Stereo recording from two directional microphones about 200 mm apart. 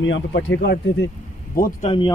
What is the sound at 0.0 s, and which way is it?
Speech, 70° left (ahead or behind).